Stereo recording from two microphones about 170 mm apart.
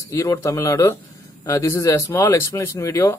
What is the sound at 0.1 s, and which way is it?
Speech, 15° left (ahead or behind).